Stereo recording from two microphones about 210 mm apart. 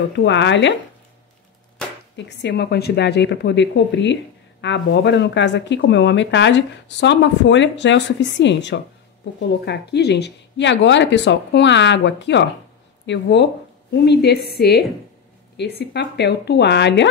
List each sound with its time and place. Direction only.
0.2 s speech: 60° left (ahead or behind)
2.1 s speech: 55° left (ahead or behind)